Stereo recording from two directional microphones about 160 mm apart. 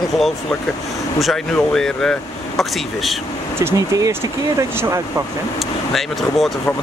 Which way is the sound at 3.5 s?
20° right (ahead or behind).